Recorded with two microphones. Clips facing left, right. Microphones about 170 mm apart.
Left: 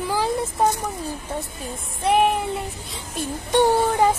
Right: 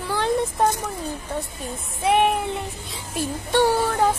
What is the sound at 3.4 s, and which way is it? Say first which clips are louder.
Speech: left 2 dB; 20° left (ahead or behind).